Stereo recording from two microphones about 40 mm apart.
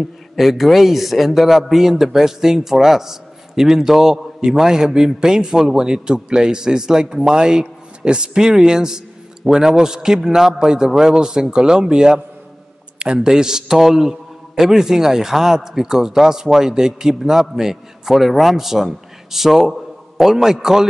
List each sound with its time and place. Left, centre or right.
0.4 s a man's voice: centre